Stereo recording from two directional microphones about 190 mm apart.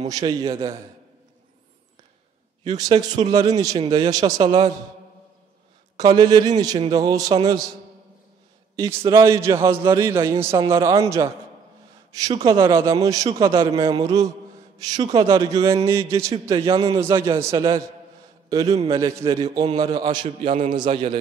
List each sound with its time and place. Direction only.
0.0 s a man's voice: 20° right (ahead or behind)
2.6 s a man's voice: 20° right (ahead or behind)
5.9 s a man's voice: 20° right (ahead or behind)
9.2 s a man's voice: 15° right (ahead or behind)
20.2 s a man's voice: 35° right (ahead or behind)
20.7 s a man's voice: 25° right (ahead or behind)